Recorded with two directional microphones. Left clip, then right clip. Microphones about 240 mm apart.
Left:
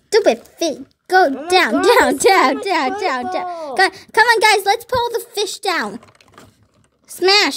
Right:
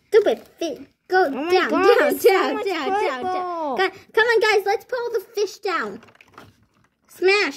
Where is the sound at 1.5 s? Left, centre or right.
Left.